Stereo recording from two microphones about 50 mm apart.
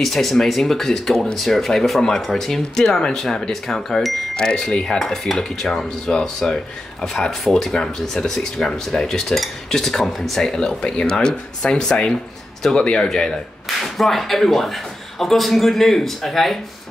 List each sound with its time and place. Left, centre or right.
0.0 s speech: centre
2.8 s speech: centre